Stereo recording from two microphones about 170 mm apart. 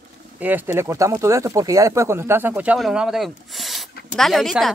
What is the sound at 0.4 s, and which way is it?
Speech, 10° right (ahead or behind).